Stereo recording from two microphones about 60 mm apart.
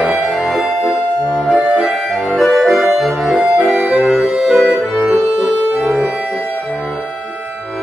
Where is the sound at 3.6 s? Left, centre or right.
Right.